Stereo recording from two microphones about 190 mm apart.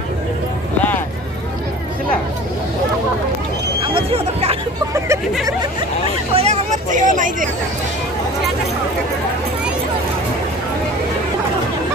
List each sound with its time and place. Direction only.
3.9 s hubbub: 30° right (ahead or behind)
4.9 s a sound: 15° right (ahead or behind)
6.3 s vehicle: 35° right (ahead or behind)